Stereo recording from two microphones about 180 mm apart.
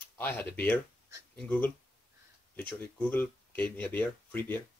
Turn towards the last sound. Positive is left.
turn(degrees=10)  # may be behind; listen again after turning